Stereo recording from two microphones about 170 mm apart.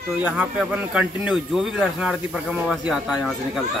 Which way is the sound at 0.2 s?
5° right (ahead or behind).